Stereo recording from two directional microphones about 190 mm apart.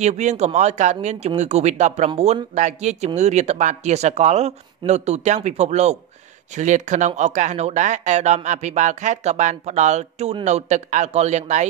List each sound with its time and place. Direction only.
0.0 s speech: 35° right (ahead or behind)